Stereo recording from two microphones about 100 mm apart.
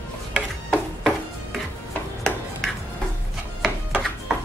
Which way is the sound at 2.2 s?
Centre (ahead or behind).